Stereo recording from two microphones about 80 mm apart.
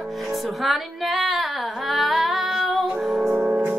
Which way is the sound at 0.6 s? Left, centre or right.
Centre.